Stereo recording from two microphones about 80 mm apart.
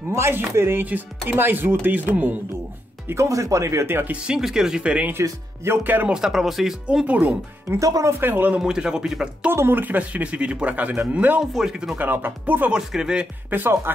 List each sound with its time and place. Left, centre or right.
0.1 s speech: right
3.1 s speech: right
4.1 s speech: centre
5.2 s speech: right
6.0 s speech: centre
7.1 s speech: centre
7.8 s speech: right
8.2 s speech: right
8.5 s speech: centre
9.5 s speech: right; by 12.0 s centre
12.0 s speech: right
12.7 s speech: centre
13.5 s speech: right